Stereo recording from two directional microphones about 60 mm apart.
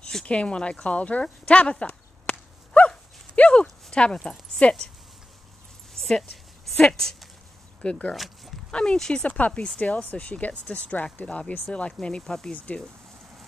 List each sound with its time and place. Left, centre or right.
0.0 s a sound: centre
3.3 s clip-clop: centre
3.6 s speech: centre
5.9 s dog: centre
6.8 s speech: centre
8.1 s speech: centre
8.7 s speech: centre
9.2 s speech: left; by 12.5 s centre
12.5 s speech: left